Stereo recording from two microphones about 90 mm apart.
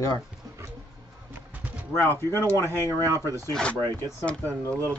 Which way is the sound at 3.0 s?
40° right (ahead or behind).